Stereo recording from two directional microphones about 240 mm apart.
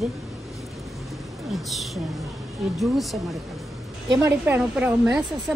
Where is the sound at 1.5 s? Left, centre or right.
Centre.